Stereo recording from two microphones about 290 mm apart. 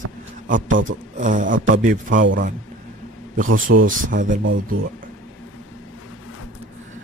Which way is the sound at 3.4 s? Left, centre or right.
Right.